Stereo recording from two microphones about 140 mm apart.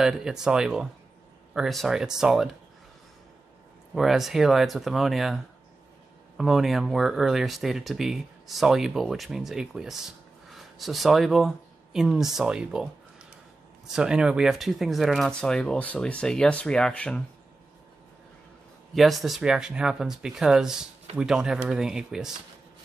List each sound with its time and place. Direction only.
0.0 s speech: 5° right (ahead or behind)
3.9 s speech: centre (ahead or behind)
18.9 s speech: centre (ahead or behind)